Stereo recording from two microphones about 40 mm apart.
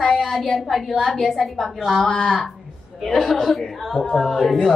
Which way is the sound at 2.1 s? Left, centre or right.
Centre.